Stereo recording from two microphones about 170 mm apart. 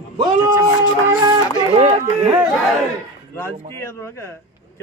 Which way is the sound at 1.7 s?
30° right (ahead or behind).